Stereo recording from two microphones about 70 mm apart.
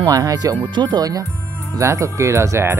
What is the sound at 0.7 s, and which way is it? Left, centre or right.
Speech, right.